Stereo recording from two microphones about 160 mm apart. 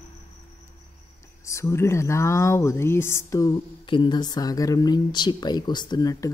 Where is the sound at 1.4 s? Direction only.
20° left (ahead or behind).